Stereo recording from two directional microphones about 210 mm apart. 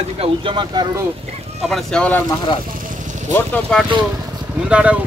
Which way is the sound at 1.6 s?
Centre (ahead or behind).